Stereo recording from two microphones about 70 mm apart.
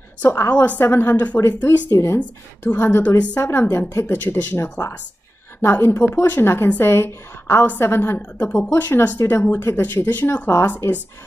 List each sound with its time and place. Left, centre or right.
0.5 s a woman's voice: left
1.9 s speech: left
4.8 s speech: left
5.6 s a woman's voice: left